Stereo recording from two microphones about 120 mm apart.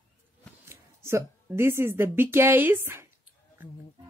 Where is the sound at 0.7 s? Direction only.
25° right (ahead or behind).